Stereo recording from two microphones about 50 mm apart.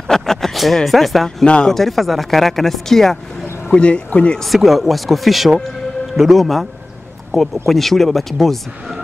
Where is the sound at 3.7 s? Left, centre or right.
Left.